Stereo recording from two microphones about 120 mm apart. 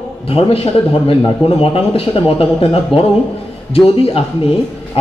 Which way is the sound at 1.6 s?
50° left (ahead or behind).